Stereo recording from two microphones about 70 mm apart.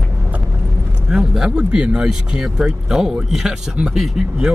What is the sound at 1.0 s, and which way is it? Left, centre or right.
Speech, centre.